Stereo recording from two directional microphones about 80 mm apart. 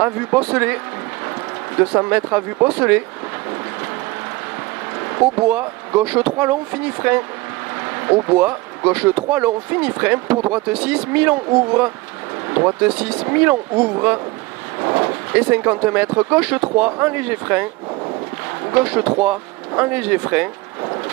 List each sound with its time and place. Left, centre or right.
0.0 s speech: right
1.8 s speech: right
5.0 s a sound: right
5.5 s speech: centre
10.5 s speech: centre
12.4 s a sound: right
12.8 s speech: centre
14.9 s vehicle: right
15.3 s speech: right
18.7 s speech: right